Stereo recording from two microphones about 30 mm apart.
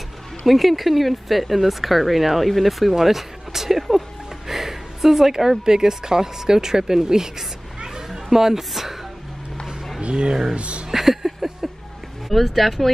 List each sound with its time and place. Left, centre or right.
0.5 s speech: centre
4.5 s a sound: centre
5.7 s speech: right
10.0 s speech: right
10.9 s a sound: centre
12.5 s speech: centre